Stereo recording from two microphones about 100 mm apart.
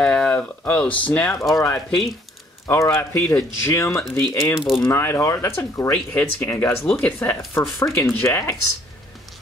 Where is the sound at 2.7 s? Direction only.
25° left (ahead or behind).